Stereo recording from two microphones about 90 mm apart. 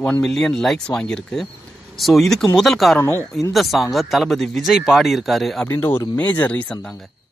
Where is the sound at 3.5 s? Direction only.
Centre (ahead or behind).